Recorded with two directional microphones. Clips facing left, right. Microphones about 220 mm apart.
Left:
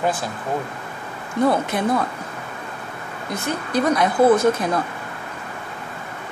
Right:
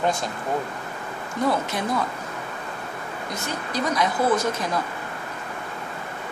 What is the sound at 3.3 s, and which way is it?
Speech, 55° left (ahead or behind).